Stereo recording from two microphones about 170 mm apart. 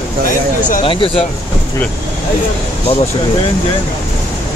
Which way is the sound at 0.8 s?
30° left (ahead or behind).